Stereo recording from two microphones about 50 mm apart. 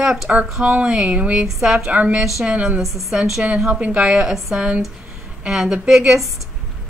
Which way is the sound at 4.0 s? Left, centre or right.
Centre.